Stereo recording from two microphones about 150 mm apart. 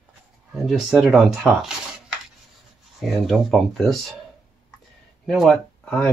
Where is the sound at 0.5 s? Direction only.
Centre (ahead or behind).